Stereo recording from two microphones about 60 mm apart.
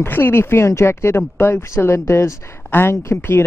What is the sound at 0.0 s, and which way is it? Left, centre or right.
Speech, left.